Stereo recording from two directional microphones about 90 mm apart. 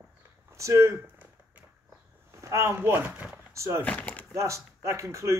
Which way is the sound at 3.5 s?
30° right (ahead or behind).